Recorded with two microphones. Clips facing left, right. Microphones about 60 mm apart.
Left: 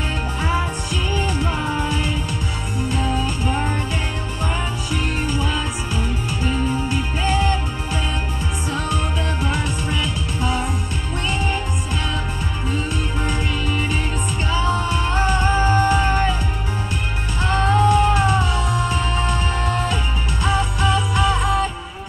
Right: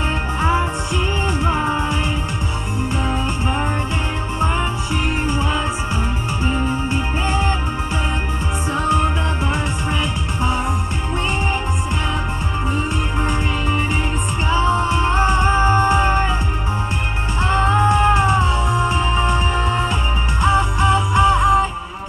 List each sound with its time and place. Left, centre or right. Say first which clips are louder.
0.4 s music: right 4 dB; right
4.9 s music: right 1 dB; right
8.7 s music: right 6 dB; right
12.7 s music: right 3 dB; right
17.4 s music: right 1 dB; right